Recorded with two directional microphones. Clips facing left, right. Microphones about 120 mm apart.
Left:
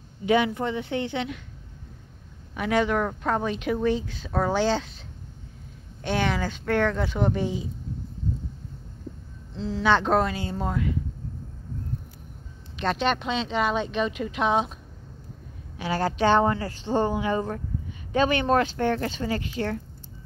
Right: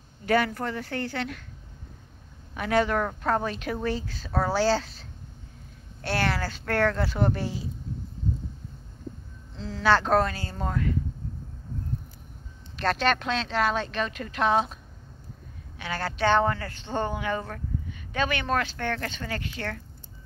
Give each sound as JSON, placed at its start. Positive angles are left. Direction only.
{"t": 0.2, "sound": "speech", "side_deg": 0}
{"t": 2.5, "sound": "speech", "side_deg": 10}
{"t": 6.0, "sound": "speech", "side_deg": -5}
{"t": 9.8, "sound": "speech", "side_deg": 0}
{"t": 10.3, "sound": "speech", "side_deg": 20}
{"t": 10.6, "sound": "speech", "side_deg": 10}
{"t": 12.8, "sound": "speech", "side_deg": 0}
{"t": 15.9, "sound": "speech", "side_deg": 15}
{"t": 17.1, "sound": "speech", "side_deg": 20}